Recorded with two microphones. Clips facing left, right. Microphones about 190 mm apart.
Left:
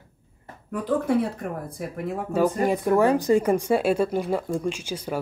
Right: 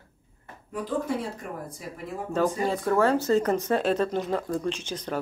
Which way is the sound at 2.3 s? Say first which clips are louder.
Left 3 dB; 15° left (ahead or behind).